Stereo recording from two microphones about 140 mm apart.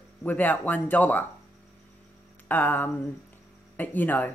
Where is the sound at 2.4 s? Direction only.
15° left (ahead or behind).